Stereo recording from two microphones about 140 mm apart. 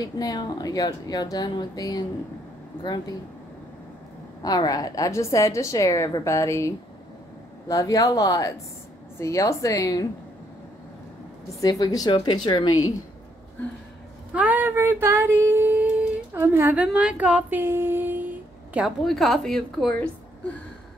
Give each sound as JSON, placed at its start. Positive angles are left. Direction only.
{"t": 0.0, "sound": "a woman's voice", "side_deg": 25}
{"t": 4.4, "sound": "a woman's voice", "side_deg": 30}
{"t": 11.6, "sound": "a woman's voice", "side_deg": 25}
{"t": 14.3, "sound": "a sound", "side_deg": -10}
{"t": 16.8, "sound": "speech", "side_deg": -10}